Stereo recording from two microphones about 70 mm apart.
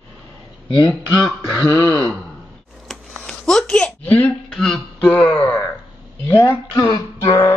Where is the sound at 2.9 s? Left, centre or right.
Centre.